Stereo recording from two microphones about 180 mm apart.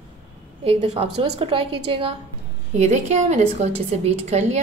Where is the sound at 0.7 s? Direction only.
35° right (ahead or behind).